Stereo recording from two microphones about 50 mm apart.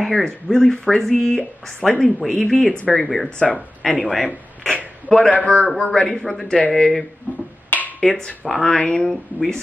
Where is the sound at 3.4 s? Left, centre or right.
Centre.